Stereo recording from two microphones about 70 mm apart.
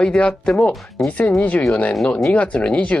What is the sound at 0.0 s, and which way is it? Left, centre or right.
Speech, centre.